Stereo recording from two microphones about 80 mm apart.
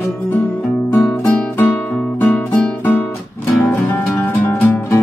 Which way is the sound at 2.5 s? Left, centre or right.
Left.